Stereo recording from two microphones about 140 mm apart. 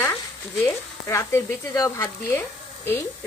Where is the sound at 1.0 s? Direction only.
20° left (ahead or behind).